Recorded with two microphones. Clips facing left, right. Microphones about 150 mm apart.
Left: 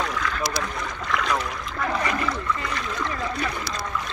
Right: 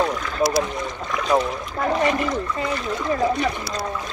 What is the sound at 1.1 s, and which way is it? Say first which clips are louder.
Speech: right 6 dB; 30° right (ahead or behind).